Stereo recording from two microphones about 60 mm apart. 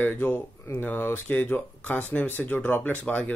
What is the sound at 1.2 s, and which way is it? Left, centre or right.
Speech, left.